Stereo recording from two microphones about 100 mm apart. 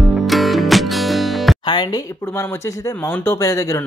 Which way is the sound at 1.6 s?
55° left (ahead or behind).